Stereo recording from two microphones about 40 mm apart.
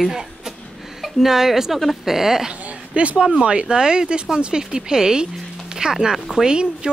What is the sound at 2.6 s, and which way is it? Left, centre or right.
Speech, right.